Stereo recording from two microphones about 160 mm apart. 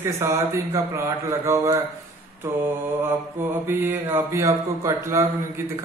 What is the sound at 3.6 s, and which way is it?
Speech, 15° right (ahead or behind).